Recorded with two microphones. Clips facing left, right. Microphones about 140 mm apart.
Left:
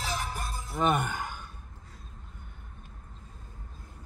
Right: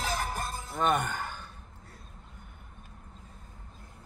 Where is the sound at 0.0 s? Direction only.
45° right (ahead or behind).